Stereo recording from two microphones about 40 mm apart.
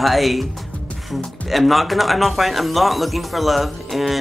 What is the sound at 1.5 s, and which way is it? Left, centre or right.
Speech, centre.